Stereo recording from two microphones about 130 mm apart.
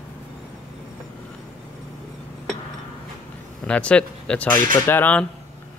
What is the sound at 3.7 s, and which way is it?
Speech, 10° left (ahead or behind).